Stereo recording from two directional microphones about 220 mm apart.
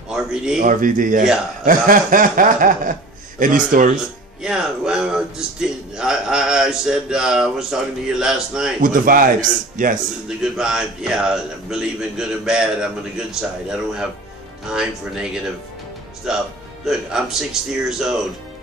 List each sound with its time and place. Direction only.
0.1 s speech: 5° right (ahead or behind)
0.6 s speech: 40° right (ahead or behind)
4.4 s a man's voice: 5° right (ahead or behind)
8.8 s speech: 40° right (ahead or behind)
10.2 s a man's voice: 5° right (ahead or behind)